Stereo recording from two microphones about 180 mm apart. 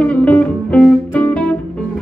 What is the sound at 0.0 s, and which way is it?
Music, 5° left (ahead or behind).